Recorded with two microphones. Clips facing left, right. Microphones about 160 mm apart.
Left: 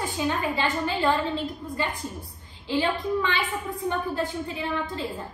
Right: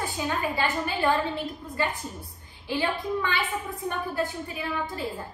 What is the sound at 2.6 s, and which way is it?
A woman's voice, 20° left (ahead or behind).